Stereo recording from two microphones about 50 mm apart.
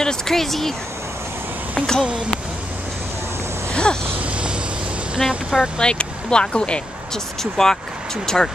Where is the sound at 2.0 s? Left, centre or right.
Right.